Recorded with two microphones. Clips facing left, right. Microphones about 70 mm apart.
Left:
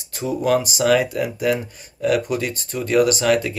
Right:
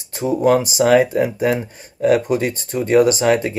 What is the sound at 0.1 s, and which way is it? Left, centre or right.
Speech, right.